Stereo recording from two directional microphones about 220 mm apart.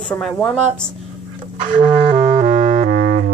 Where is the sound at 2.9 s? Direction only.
40° right (ahead or behind).